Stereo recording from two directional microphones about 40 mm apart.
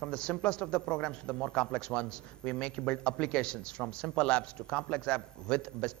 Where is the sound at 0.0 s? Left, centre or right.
Left.